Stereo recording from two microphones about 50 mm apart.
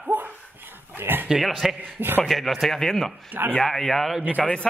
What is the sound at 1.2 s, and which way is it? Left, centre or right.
Speech, centre.